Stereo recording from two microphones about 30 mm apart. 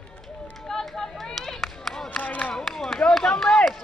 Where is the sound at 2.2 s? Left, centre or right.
Left.